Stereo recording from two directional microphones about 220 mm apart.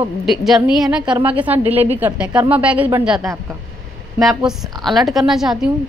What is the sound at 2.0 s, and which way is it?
A woman's voice, 5° right (ahead or behind).